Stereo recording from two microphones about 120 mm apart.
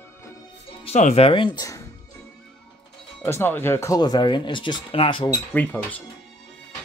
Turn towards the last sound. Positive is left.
turn(degrees=15)  # may be behind; listen again after turning